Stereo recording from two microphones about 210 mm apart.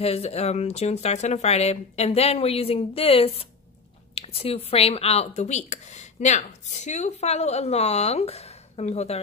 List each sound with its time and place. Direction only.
0.0 s speech: 30° left (ahead or behind)